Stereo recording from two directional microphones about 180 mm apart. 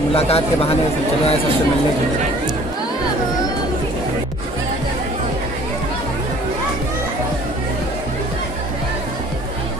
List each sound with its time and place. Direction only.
0.1 s a man's voice: 35° left (ahead or behind)